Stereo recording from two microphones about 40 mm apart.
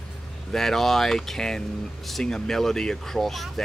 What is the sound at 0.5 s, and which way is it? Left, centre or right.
Speech, centre.